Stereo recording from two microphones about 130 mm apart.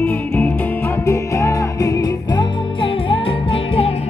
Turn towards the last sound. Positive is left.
turn(degrees=40)  # may be behind; listen again after turning